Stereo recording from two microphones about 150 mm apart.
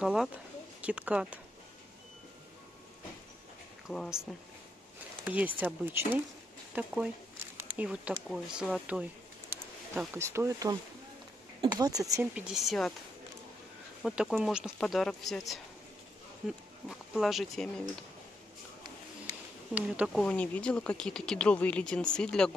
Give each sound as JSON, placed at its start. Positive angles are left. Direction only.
{"t": 0.0, "sound": "speech", "side_deg": -5}
{"t": 3.8, "sound": "speech", "side_deg": 0}
{"t": 7.5, "sound": "a sound", "side_deg": -10}
{"t": 8.3, "sound": "speech", "side_deg": 0}
{"t": 9.9, "sound": "speech", "side_deg": -15}
{"t": 12.2, "sound": "speech", "side_deg": -5}
{"t": 14.0, "sound": "speech", "side_deg": -5}
{"t": 19.7, "sound": "speech", "side_deg": -5}